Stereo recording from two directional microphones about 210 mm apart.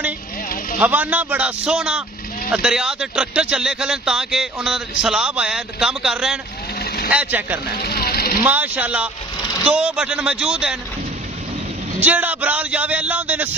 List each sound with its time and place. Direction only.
0.7 s speech: 10° right (ahead or behind)
7.7 s speech: 45° left (ahead or behind)
8.5 s speech: 10° right (ahead or behind)
12.0 s speech: 5° right (ahead or behind)